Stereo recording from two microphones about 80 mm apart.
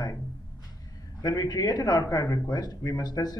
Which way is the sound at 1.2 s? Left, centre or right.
Left.